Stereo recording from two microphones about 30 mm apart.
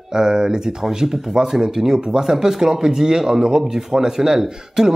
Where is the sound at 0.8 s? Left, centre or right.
Centre.